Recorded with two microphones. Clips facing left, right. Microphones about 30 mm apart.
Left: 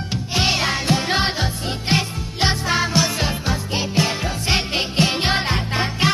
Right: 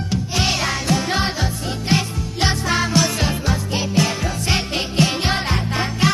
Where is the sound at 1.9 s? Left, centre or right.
Centre.